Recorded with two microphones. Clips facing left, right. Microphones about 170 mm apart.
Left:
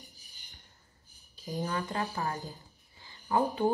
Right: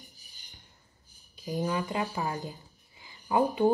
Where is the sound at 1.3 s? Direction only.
20° right (ahead or behind).